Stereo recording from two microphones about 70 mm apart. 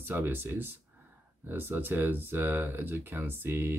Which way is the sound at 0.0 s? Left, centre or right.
Right.